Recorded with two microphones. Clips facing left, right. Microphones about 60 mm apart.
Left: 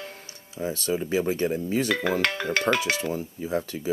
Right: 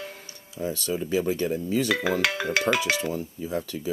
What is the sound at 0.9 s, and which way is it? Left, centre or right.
Speech, left.